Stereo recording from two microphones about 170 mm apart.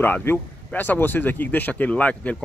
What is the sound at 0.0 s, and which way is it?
Speech, 10° left (ahead or behind).